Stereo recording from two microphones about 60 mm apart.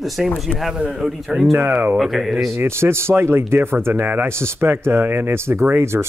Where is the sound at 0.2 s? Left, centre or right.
Centre.